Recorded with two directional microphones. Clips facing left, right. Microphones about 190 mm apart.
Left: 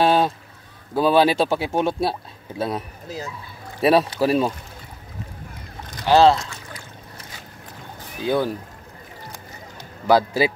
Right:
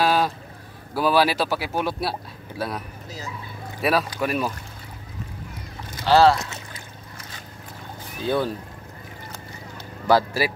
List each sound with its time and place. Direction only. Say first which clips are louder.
0.0 s boat: left 3 dB; 25° left (ahead or behind)
0.9 s speech: left 3 dB; 25° left (ahead or behind)
3.8 s speech: left 6 dB; 30° left (ahead or behind)
6.0 s speech: left 2 dB; 20° left (ahead or behind)
8.2 s speech: left 2 dB; 15° left (ahead or behind)
10.0 s speech: left 2 dB; 15° left (ahead or behind)